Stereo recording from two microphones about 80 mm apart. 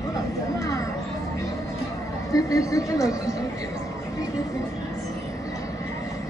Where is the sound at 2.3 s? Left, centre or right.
Left.